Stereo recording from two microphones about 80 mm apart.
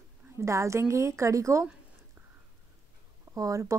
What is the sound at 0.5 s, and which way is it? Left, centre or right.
Speech, right.